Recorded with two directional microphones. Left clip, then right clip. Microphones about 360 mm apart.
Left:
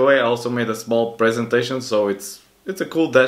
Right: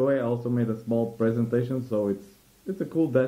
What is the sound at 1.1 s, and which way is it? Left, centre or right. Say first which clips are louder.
Speech: left 8 dB; centre.